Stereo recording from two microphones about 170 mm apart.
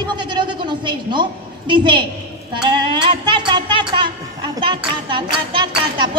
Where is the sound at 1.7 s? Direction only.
25° right (ahead or behind).